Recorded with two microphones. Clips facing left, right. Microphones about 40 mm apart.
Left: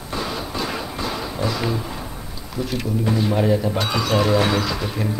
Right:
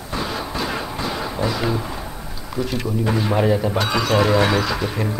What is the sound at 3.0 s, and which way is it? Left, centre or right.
Speech, right.